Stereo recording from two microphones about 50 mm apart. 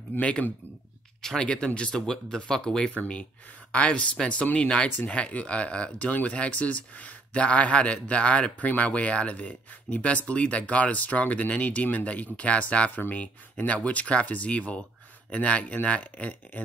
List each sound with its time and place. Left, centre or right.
0.2 s speech: left
1.2 s speech: centre
3.7 s speech: left